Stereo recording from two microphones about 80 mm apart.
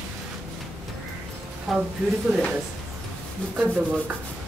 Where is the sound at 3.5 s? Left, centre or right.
Right.